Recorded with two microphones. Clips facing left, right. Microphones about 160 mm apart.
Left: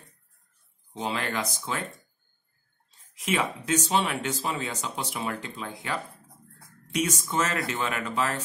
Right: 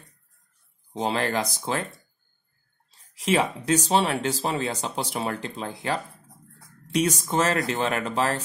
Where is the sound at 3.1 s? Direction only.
35° right (ahead or behind).